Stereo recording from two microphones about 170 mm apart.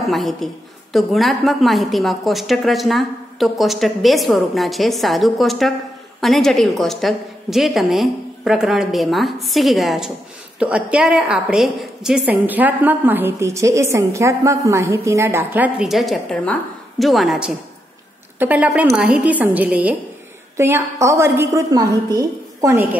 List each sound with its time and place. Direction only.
0.0 s a woman's voice: centre (ahead or behind); by 22.8 s 20° right (ahead or behind)